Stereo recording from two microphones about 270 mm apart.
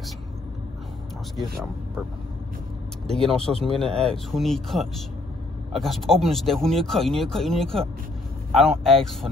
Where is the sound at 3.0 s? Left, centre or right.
Centre.